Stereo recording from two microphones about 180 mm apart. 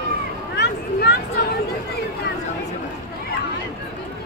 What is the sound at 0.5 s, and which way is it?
Speech, 70° left (ahead or behind).